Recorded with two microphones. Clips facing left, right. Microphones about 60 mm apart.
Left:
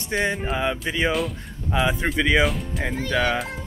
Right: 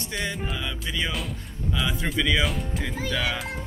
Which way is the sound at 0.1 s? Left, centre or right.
Left.